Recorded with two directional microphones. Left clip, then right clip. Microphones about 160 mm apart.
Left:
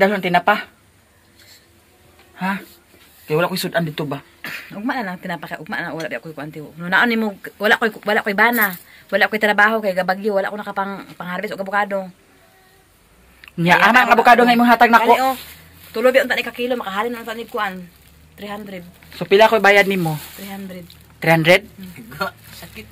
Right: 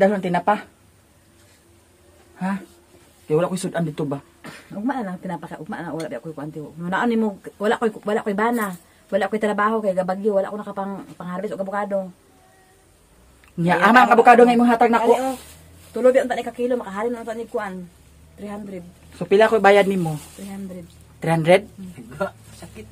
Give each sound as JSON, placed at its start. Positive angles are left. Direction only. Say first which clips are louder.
{"t": 0.0, "sound": "speech", "louder": "left 3 dB", "side_deg": -10}
{"t": 2.3, "sound": "speech", "louder": "left 5 dB", "side_deg": -5}
{"t": 4.5, "sound": "a sound", "louder": "left 7 dB", "side_deg": -15}
{"t": 4.8, "sound": "speech", "louder": "left 3 dB", "side_deg": -25}
{"t": 13.6, "sound": "speech", "louder": "left 2 dB", "side_deg": 5}
{"t": 16.1, "sound": "speech", "louder": "left 2 dB", "side_deg": -20}
{"t": 18.4, "sound": "speech", "louder": "left 3 dB", "side_deg": -15}